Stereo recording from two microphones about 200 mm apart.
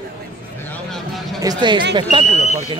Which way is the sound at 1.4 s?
20° right (ahead or behind).